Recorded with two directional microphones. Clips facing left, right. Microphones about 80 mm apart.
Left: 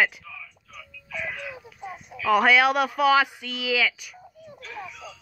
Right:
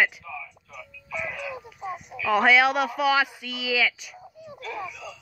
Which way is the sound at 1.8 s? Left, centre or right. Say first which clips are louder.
Right 2 dB; centre.